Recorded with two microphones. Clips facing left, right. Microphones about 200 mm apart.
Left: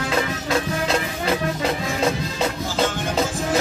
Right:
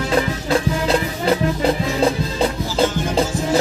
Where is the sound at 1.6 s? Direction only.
30° right (ahead or behind).